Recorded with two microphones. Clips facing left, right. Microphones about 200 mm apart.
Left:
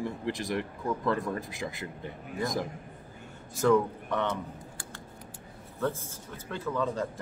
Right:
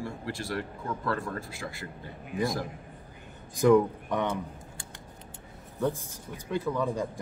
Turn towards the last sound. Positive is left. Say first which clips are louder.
# right 1 dB
turn(degrees=-10)  # may be behind; listen again after turning